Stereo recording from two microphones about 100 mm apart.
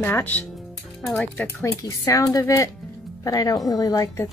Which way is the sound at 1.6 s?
35° left (ahead or behind).